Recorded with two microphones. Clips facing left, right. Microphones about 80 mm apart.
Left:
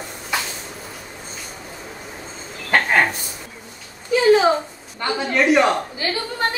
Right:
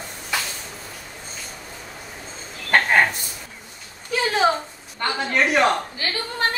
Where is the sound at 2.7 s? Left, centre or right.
Centre.